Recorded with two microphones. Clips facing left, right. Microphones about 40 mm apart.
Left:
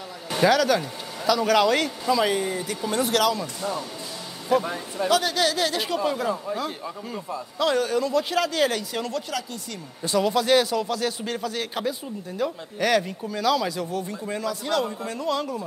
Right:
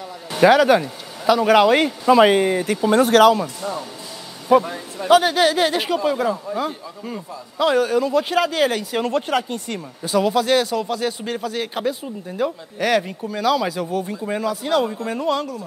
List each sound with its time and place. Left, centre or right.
0.4 s speech: right
2.0 s speech: right
4.5 s speech: centre
6.0 s speech: centre
6.6 s speech: centre
9.0 s speech: right
10.0 s speech: centre